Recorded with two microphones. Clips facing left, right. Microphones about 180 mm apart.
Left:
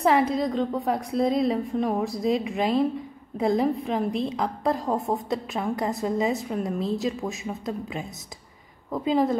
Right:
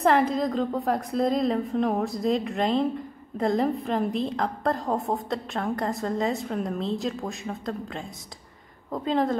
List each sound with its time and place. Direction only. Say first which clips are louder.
0.0 s a woman's voice: even; centre (ahead or behind)